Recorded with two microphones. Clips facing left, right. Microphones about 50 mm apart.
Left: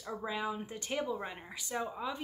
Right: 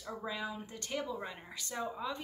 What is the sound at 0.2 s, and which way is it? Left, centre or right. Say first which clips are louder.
Speech: left 4 dB; centre.